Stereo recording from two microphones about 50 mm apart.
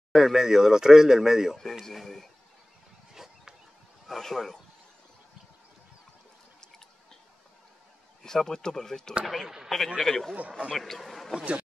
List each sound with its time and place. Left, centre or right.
0.1 s speech: centre
1.6 s a man's voice: centre
4.1 s a man's voice: centre
8.2 s speech: centre
9.2 s a man's voice: centre